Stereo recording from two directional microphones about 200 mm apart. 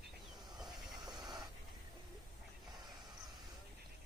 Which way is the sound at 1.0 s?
20° right (ahead or behind).